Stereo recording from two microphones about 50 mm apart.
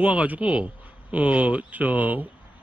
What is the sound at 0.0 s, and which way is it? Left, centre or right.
Speech, right.